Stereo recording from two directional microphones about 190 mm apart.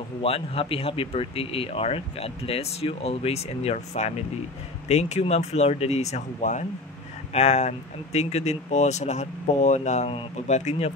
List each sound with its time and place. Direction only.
0.2 s speech: 30° left (ahead or behind)